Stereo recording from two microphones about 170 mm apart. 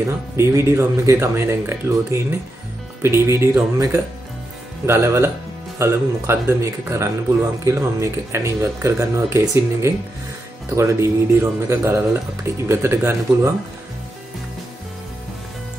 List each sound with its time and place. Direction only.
0.4 s speech: 15° right (ahead or behind)